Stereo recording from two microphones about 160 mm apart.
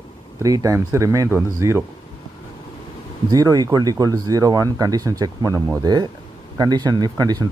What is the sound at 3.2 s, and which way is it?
Speech, 20° right (ahead or behind).